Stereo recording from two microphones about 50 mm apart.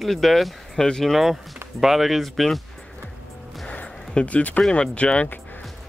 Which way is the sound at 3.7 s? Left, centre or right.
Left.